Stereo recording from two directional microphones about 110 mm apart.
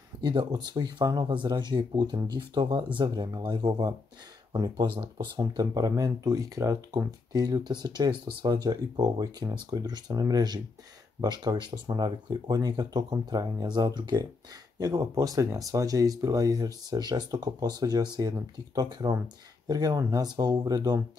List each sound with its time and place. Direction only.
0.2 s speech: 45° right (ahead or behind)